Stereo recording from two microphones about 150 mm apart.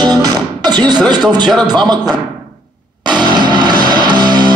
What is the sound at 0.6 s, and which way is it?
A man's voice, 30° right (ahead or behind).